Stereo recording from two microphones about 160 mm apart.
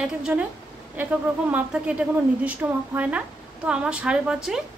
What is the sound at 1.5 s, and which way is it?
A woman's voice, 10° right (ahead or behind).